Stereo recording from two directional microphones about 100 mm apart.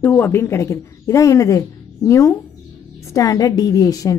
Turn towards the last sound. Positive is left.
turn(degrees=35)  # may be behind; listen again after turning